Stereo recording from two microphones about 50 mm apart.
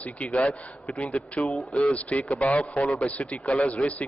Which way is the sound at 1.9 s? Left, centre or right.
Left.